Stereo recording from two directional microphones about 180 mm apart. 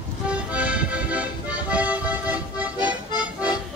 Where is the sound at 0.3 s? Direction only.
5° right (ahead or behind).